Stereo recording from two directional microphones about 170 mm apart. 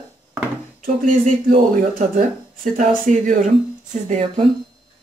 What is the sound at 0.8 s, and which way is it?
Speech, 50° right (ahead or behind).